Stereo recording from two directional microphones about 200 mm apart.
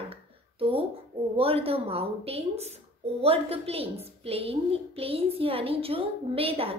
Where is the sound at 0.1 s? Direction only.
30° right (ahead or behind).